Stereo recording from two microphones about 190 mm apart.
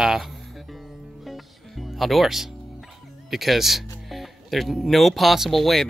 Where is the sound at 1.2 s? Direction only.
Centre (ahead or behind).